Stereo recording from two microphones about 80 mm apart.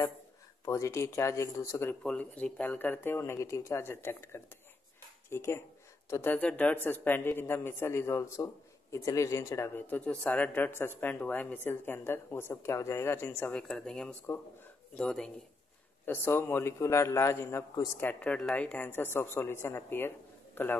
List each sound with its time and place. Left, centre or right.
0.7 s a man's voice: left
2.0 s speech: centre
3.2 s a man's voice: left
6.2 s a man's voice: left
9.8 s speech: left
13.5 s speech: centre
16.1 s a man's voice: left
18.5 s speech: centre